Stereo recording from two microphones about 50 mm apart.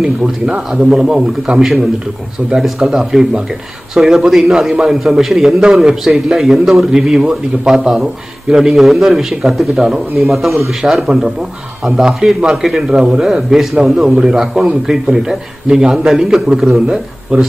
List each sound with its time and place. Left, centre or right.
0.0 s a man's voice: centre